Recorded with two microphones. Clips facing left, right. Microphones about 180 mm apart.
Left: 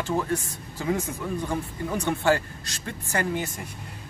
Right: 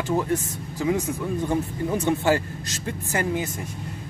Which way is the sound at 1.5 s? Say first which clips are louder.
Right 4 dB; 20° right (ahead or behind).